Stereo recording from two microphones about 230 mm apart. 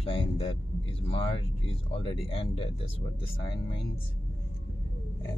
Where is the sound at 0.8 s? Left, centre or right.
Left.